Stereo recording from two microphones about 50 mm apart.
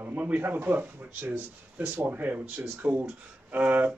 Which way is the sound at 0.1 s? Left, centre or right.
Right.